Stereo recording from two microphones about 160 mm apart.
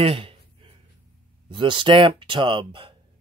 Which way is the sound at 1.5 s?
30° right (ahead or behind).